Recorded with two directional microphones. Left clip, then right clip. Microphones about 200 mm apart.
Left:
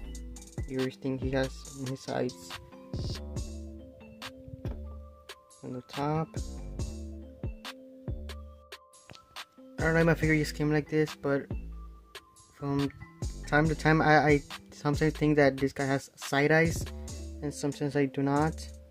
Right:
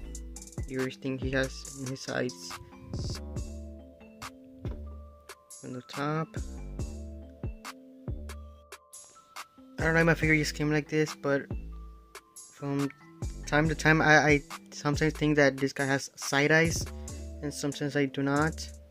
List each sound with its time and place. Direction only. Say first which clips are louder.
0.7 s speech: even; centre (ahead or behind)
5.7 s speech: left 1 dB; 5° left (ahead or behind)
6.5 s music: even; 15° left (ahead or behind)
7.6 s music: left 1 dB; centre (ahead or behind)
9.3 s speech: right 1 dB; 5° right (ahead or behind)
12.1 s music: even; 5° left (ahead or behind)
13.2 s speech: left 1 dB; 5° left (ahead or behind)